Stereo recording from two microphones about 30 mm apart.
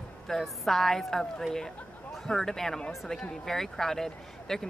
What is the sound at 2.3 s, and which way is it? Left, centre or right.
Speech, centre.